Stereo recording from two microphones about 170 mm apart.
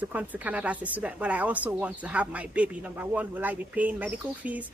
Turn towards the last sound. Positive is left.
turn(degrees=-10)  # may be behind; listen again after turning